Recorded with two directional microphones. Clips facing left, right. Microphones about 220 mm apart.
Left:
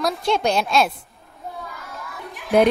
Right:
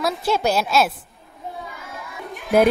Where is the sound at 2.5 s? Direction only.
Centre (ahead or behind).